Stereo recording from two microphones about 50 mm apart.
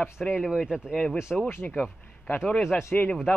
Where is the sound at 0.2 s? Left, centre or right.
Centre.